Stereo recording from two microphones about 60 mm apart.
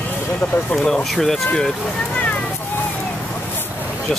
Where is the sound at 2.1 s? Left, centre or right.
Left.